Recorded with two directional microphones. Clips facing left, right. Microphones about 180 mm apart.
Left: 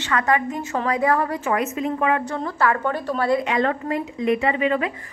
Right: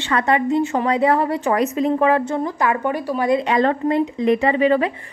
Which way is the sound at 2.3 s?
15° right (ahead or behind).